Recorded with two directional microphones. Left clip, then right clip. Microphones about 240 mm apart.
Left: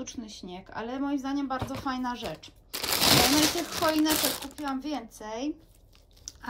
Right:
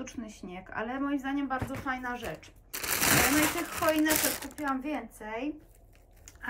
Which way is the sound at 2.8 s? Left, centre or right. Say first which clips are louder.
Left 4 dB; left.